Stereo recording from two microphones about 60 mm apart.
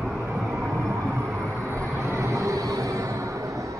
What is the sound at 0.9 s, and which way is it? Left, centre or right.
Vehicle, right.